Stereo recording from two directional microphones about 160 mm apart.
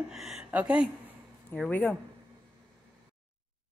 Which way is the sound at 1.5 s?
5° left (ahead or behind).